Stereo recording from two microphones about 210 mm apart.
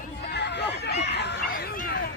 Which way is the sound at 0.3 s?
55° left (ahead or behind).